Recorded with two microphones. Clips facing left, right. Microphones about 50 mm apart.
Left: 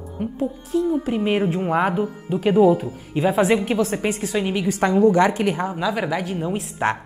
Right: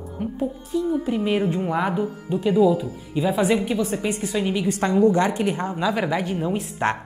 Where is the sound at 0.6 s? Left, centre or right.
Left.